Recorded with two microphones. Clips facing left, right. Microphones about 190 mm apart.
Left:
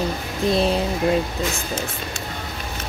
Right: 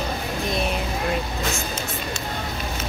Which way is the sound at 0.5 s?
30° left (ahead or behind).